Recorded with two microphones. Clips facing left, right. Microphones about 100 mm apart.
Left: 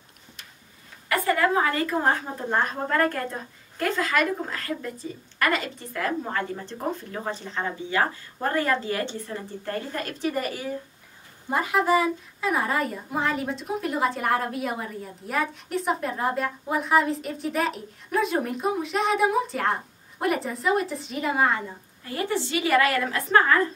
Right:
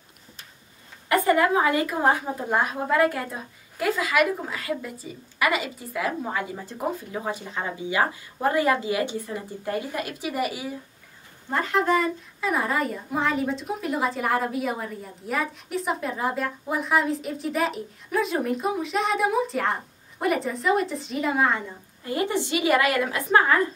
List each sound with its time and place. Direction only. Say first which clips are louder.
1.0 s a woman's voice: right 3 dB; 20° right (ahead or behind)
11.4 s a woman's voice: even; 10° left (ahead or behind)
22.0 s a woman's voice: right 2 dB; 20° right (ahead or behind)